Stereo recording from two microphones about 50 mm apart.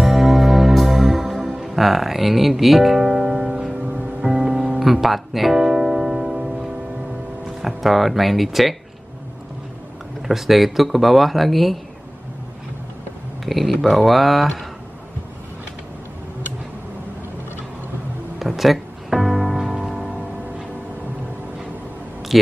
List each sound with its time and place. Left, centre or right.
0.0 s music: centre
1.6 s speech: centre
3.1 s music: centre
3.8 s music: right
4.2 s music: centre
4.8 s music: centre
7.6 s speech: centre
10.2 s speech: centre
13.5 s speech: centre
18.4 s music: centre
22.3 s speech: centre